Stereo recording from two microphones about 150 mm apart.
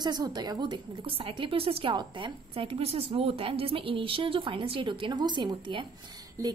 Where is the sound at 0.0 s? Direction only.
25° right (ahead or behind).